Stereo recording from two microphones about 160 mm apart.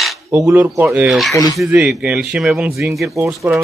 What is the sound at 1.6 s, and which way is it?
Speech, centre (ahead or behind).